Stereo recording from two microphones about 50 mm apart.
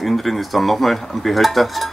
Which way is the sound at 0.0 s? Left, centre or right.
Centre.